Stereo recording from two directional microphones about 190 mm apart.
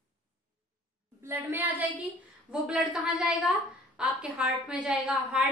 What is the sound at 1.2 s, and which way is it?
A woman's voice, 10° right (ahead or behind).